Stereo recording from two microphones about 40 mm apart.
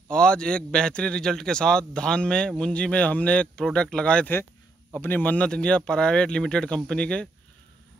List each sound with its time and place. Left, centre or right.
0.1 s a man's voice: left
5.0 s speech: left
5.3 s a man's voice: left